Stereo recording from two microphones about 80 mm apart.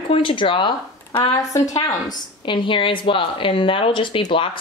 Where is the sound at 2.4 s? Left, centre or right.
Left.